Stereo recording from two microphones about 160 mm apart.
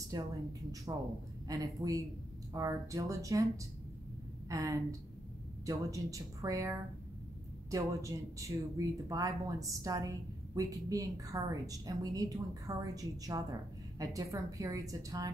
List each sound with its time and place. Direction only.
0.1 s speech: 20° right (ahead or behind)
4.5 s speech: 20° right (ahead or behind)